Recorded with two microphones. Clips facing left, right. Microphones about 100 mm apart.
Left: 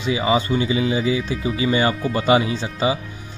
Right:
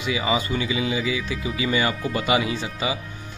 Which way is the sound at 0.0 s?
30° left (ahead or behind).